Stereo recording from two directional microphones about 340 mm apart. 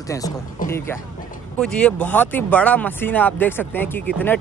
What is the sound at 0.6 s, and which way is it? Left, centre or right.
Speech, left.